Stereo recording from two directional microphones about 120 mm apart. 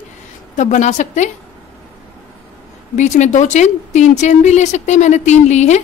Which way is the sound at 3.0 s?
80° left.